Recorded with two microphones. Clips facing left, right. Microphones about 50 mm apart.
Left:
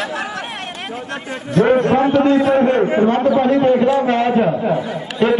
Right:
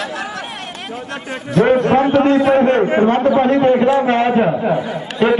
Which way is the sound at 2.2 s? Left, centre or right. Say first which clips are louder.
Right 1 dB; right.